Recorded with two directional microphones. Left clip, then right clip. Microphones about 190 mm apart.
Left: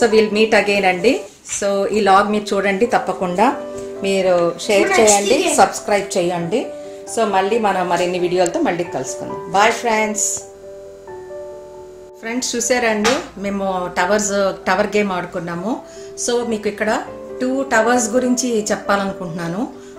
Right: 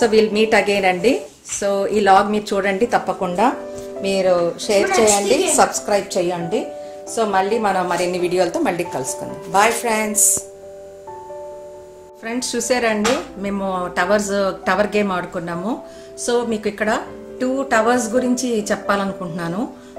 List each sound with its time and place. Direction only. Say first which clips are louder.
0.0 s a woman's voice: left 1 dB; centre (ahead or behind)
6.0 s a woman's voice: left 2 dB; 15° left (ahead or behind)
12.3 s a woman's voice: left 1 dB; centre (ahead or behind)